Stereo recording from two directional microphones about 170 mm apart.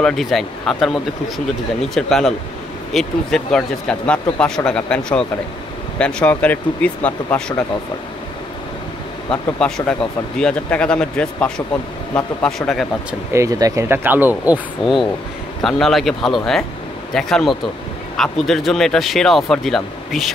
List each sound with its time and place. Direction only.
0.0 s speech: centre (ahead or behind)
9.3 s speech: 5° left (ahead or behind)
12.4 s speech: centre (ahead or behind)
13.3 s speech: 20° right (ahead or behind); by 20.2 s centre (ahead or behind)